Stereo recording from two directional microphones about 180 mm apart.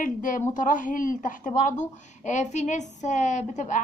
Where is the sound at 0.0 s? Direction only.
45° left (ahead or behind).